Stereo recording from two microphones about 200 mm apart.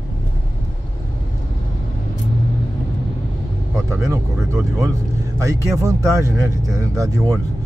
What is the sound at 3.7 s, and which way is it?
Vehicle, 15° right (ahead or behind).